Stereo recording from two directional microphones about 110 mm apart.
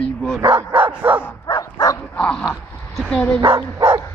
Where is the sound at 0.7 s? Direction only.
15° right (ahead or behind).